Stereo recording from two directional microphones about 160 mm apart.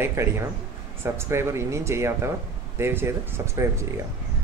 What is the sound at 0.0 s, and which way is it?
Speech, 15° right (ahead or behind).